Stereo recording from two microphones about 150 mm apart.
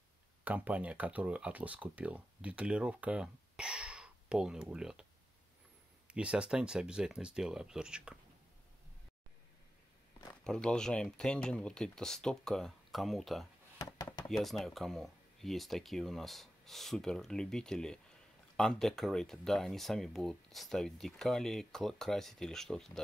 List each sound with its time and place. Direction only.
0.4 s speech: 10° right (ahead or behind)
6.1 s speech: 5° right (ahead or behind)
10.4 s speech: 5° left (ahead or behind)
13.7 s a sound: 20° left (ahead or behind)
14.3 s speech: centre (ahead or behind)